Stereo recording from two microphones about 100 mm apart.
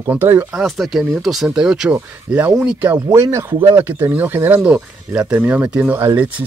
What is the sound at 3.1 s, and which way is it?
Speech, 30° right (ahead or behind).